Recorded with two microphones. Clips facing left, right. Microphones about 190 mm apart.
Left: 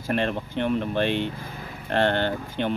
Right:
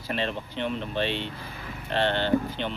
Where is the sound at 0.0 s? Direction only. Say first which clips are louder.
Left 5 dB; 50° left (ahead or behind).